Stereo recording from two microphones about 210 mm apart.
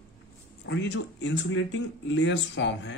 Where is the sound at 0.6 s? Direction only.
60° left (ahead or behind).